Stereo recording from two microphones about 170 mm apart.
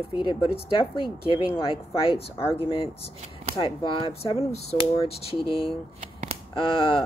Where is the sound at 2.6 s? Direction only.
35° left (ahead or behind).